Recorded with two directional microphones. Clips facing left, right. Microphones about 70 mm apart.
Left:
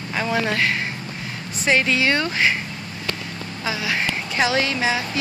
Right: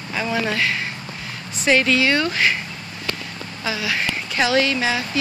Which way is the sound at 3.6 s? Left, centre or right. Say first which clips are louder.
Even; left.